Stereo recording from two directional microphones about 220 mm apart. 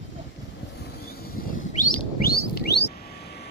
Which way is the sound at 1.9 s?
45° left (ahead or behind).